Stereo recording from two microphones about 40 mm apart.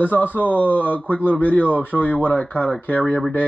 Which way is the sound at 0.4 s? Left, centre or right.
Left.